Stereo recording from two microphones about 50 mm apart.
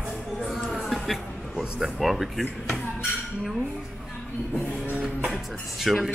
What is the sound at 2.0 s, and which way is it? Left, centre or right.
Speech, centre.